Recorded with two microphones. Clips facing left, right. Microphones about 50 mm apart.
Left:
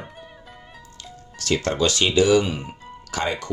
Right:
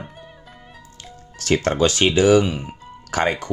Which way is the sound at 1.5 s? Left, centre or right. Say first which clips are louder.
Right 3 dB; right.